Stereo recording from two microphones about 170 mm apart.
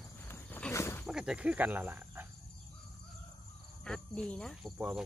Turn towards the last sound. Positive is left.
turn(degrees=5)  # may be behind; listen again after turning